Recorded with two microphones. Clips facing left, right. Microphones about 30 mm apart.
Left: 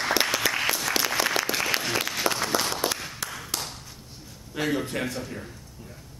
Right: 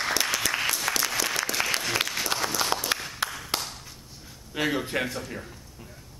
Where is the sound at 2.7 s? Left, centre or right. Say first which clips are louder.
Even; right.